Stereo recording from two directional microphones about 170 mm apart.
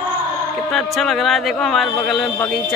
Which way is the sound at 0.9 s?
Centre (ahead or behind).